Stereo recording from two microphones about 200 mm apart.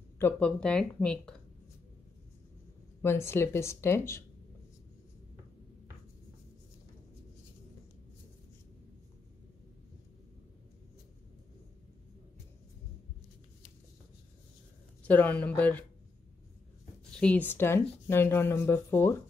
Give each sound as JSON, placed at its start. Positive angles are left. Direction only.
{"t": 0.2, "sound": "speech", "side_deg": 5}
{"t": 3.0, "sound": "speech", "side_deg": 15}
{"t": 15.0, "sound": "speech", "side_deg": 10}
{"t": 17.2, "sound": "speech", "side_deg": 10}